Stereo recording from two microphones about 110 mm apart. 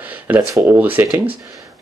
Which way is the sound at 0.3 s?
15° right (ahead or behind).